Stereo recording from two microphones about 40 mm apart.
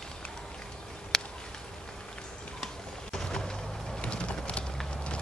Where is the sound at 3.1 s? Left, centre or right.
Centre.